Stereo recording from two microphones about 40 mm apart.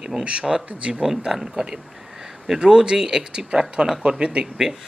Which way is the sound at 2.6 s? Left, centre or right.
Right.